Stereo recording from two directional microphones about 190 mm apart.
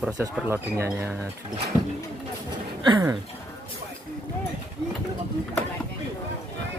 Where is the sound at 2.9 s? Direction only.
20° right (ahead or behind).